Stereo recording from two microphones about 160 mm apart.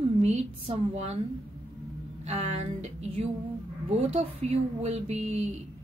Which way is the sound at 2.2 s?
45° right (ahead or behind).